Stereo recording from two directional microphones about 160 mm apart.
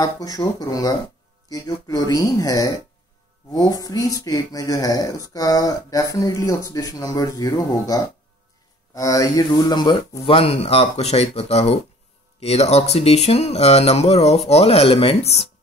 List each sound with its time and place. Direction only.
0.0 s speech: 25° left (ahead or behind); by 15.4 s 40° left (ahead or behind)